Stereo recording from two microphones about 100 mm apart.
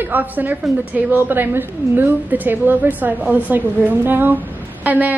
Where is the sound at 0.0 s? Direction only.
20° right (ahead or behind).